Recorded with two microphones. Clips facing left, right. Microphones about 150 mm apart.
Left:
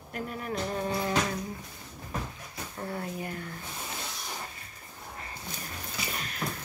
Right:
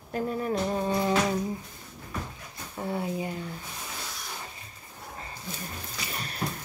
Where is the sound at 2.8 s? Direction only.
15° right (ahead or behind).